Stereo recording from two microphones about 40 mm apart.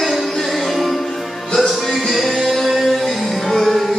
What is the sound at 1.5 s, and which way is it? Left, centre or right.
Music, centre.